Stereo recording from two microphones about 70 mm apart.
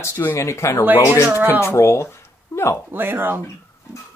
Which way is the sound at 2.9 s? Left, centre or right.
Right.